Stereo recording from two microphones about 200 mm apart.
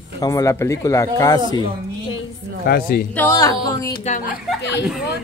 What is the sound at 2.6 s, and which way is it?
Speech, 50° left (ahead or behind).